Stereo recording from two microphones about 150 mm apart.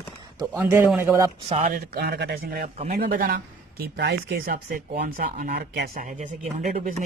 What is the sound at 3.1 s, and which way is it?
Speech, 70° right (ahead or behind).